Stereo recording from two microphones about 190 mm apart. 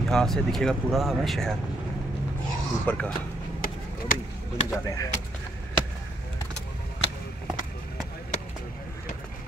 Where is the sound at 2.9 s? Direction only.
5° left (ahead or behind).